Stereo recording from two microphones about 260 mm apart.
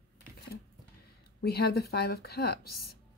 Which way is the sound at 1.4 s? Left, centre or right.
Left.